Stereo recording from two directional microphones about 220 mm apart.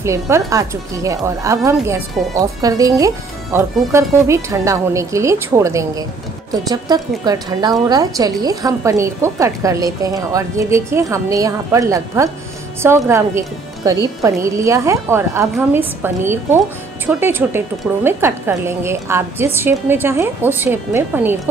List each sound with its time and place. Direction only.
0.0 s a woman's voice: 15° right (ahead or behind)
17.0 s a woman's voice: 10° right (ahead or behind)